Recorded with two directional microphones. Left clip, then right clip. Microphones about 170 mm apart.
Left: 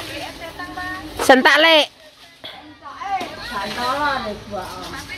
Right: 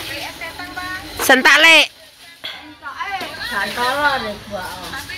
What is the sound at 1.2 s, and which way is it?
Speech, 20° left (ahead or behind).